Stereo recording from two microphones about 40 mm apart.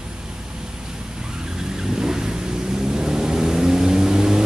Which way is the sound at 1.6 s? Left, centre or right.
Centre.